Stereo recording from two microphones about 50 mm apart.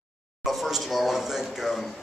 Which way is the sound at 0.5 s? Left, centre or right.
Centre.